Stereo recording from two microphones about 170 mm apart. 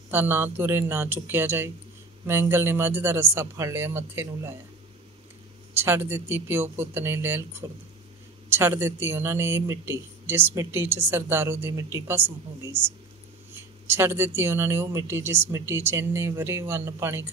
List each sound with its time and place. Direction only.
0.1 s speech: 10° right (ahead or behind)
5.8 s speech: 15° right (ahead or behind)
8.5 s speech: 15° right (ahead or behind)